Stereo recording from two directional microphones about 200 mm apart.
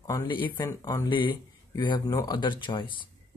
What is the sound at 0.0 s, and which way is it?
Speech, 20° left (ahead or behind).